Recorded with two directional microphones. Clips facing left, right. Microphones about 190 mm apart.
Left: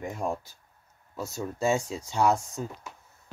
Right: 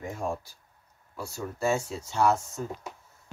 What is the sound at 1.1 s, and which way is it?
Speech, 20° left (ahead or behind).